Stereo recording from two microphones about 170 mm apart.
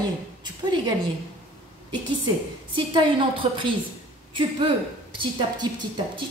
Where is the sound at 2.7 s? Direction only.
30° right (ahead or behind).